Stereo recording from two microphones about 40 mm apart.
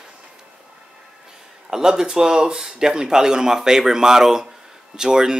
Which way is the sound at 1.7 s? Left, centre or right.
Centre.